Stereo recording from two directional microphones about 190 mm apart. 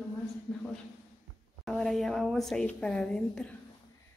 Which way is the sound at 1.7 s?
Centre (ahead or behind).